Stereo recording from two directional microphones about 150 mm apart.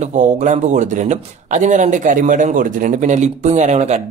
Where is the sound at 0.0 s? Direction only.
55° right (ahead or behind).